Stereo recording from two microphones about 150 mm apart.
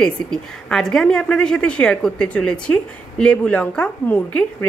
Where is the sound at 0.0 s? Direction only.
5° left (ahead or behind).